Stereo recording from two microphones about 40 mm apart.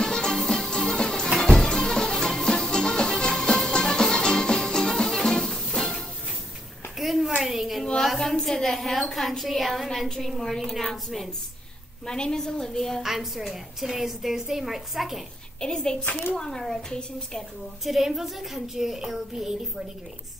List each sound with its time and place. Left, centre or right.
0.0 s music: centre
7.0 s a sound: centre
7.8 s a sound: centre
8.2 s a woman's voice: centre
12.1 s a woman's voice: centre
13.0 s a woman's voice: centre
15.6 s a child's voice: centre
17.8 s a woman's voice: centre